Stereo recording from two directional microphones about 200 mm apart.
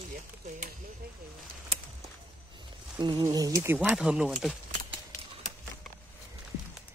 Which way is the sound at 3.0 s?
20° right (ahead or behind).